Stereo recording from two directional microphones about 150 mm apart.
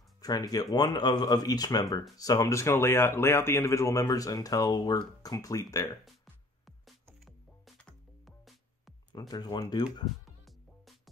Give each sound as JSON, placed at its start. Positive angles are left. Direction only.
{"t": 0.2, "sound": "speech", "side_deg": 25}
{"t": 7.2, "sound": "music", "side_deg": 0}
{"t": 9.3, "sound": "speech", "side_deg": 30}
{"t": 10.2, "sound": "music", "side_deg": 0}